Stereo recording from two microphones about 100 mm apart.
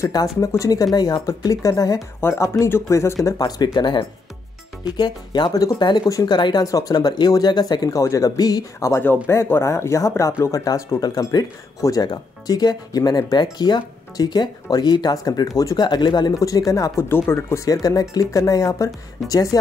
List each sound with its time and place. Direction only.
0.0 s speech: 35° left (ahead or behind)
3.3 s speech: 40° left (ahead or behind)